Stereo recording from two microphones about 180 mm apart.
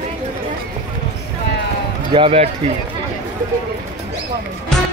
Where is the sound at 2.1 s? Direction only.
30° right (ahead or behind).